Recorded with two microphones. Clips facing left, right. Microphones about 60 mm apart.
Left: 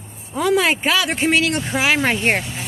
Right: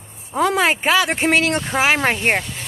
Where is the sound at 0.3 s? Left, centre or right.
Right.